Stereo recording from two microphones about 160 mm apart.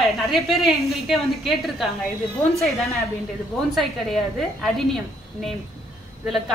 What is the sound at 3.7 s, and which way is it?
A woman's voice, centre (ahead or behind).